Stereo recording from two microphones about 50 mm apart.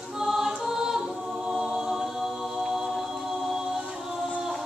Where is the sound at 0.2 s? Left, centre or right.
Centre.